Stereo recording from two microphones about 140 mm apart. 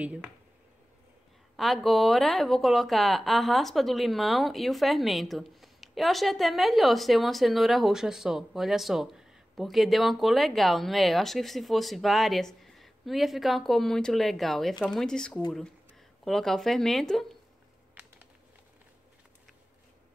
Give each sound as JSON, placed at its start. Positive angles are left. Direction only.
{"t": 0.0, "sound": "speech", "side_deg": -10}
{"t": 1.6, "sound": "speech", "side_deg": 0}